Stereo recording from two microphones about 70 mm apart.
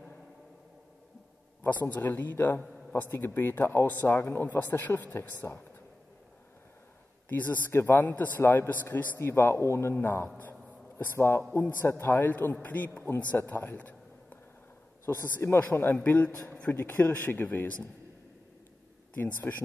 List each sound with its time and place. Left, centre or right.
1.6 s a man's voice: left
4.1 s speech: left
4.5 s a man's voice: left
5.4 s speech: left
7.2 s a man's voice: left
9.3 s a man's voice: left
16.4 s speech: centre
16.7 s a man's voice: left
19.1 s a man's voice: left